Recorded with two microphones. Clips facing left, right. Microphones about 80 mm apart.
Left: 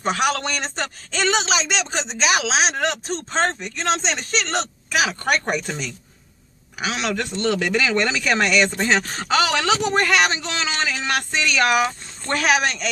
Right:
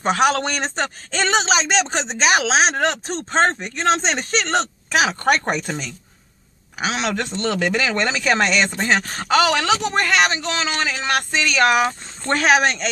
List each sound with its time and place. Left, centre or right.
0.0 s speech: right
1.5 s speech: right
6.8 s speech: right